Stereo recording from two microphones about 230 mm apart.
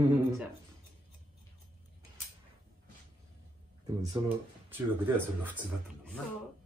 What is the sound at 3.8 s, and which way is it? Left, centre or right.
A woman's voice, centre.